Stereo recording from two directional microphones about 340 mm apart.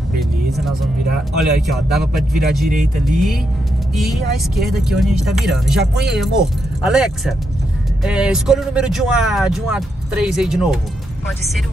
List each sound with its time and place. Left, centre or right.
0.2 s vehicle: centre
1.7 s speech: centre
2.7 s speech: right
3.9 s speech: centre